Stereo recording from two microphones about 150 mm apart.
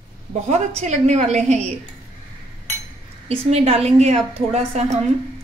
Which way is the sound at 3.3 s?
45° right (ahead or behind).